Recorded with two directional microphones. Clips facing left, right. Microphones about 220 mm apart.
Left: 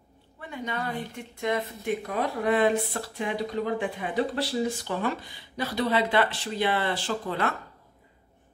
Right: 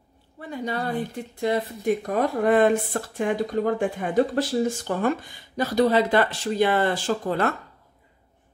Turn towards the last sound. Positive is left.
turn(degrees=-45)  # may be behind; listen again after turning